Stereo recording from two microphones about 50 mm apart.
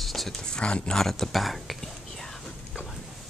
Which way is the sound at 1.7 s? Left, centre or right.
Centre.